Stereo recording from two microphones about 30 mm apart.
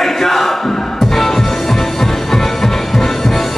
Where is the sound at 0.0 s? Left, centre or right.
Centre.